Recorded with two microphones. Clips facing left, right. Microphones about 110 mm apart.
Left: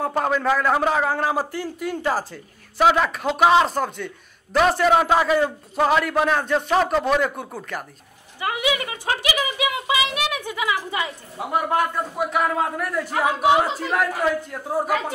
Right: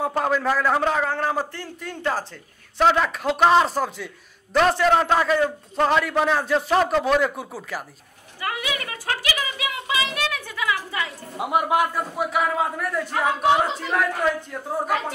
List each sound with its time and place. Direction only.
0.0 s a man's voice: centre (ahead or behind)
8.4 s a child's voice: 20° left (ahead or behind)
11.3 s a man's voice: 15° right (ahead or behind); by 15.1 s 5° left (ahead or behind)